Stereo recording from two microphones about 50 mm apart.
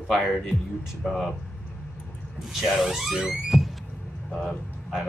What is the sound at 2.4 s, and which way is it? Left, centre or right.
Speech, centre.